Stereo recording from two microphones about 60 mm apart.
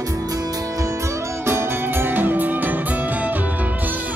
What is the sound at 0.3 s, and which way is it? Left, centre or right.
Music, right.